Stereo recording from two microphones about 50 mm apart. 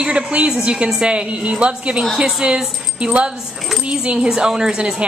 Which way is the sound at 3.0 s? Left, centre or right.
Right.